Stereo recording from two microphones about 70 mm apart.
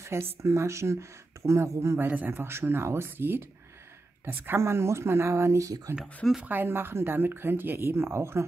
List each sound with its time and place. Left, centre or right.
0.0 s speech: right
2.0 s speech: right
4.6 s speech: right
5.9 s speech: centre
6.4 s speech: right